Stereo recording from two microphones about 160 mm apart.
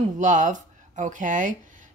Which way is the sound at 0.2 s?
50° right (ahead or behind).